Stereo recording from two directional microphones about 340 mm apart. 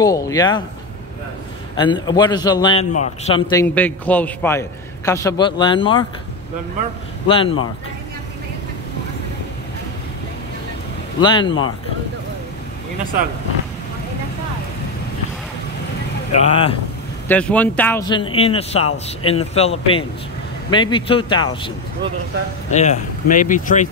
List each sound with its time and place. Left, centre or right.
0.0 s a man's voice: centre
1.8 s a man's voice: centre
7.2 s a man's voice: centre
11.1 s a man's voice: centre
16.3 s speech: centre
17.3 s a man's voice: centre; by 23.9 s left